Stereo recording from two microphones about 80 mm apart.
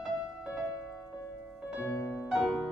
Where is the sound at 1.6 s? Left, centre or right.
Centre.